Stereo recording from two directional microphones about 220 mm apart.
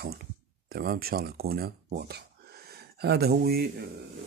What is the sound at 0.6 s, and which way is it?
Speech, 45° right (ahead or behind).